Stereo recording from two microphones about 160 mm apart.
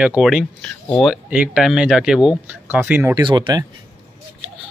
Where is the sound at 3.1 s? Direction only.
30° right (ahead or behind).